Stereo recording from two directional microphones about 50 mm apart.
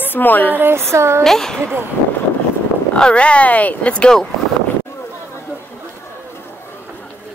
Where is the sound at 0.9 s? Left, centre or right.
Right.